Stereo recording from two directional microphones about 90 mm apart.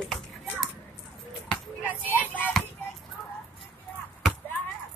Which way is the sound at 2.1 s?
20° left (ahead or behind).